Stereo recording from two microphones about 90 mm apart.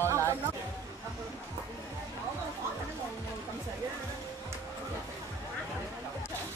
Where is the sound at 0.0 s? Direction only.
30° right (ahead or behind).